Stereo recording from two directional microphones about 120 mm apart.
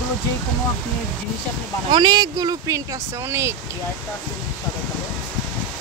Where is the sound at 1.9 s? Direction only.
35° right (ahead or behind).